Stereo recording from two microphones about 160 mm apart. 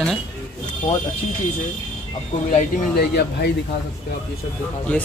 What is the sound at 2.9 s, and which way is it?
Speech, 90° left.